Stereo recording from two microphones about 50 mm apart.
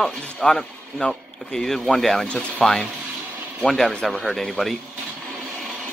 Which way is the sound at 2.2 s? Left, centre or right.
Left.